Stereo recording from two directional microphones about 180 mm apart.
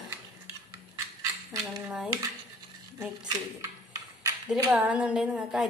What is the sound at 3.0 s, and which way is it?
A woman's voice, 15° right (ahead or behind).